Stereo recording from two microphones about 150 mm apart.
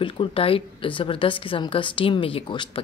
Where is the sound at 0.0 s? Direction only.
40° left (ahead or behind).